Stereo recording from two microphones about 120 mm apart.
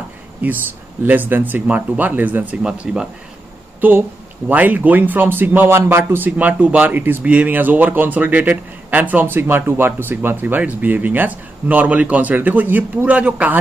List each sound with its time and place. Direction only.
0.4 s speech: 15° right (ahead or behind)